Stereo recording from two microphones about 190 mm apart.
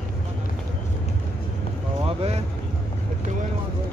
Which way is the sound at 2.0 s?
30° right (ahead or behind).